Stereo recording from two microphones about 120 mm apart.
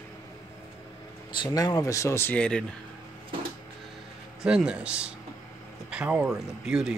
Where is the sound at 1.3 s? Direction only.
35° left (ahead or behind).